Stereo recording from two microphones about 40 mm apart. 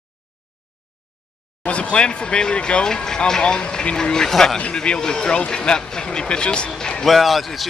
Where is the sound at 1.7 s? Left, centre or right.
Left; by 4.6 s centre.